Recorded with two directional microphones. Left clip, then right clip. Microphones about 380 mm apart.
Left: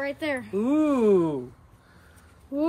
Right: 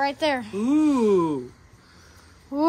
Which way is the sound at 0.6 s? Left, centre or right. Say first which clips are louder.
Even; centre.